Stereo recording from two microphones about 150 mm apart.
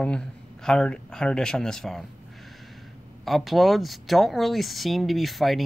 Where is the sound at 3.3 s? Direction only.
Centre (ahead or behind).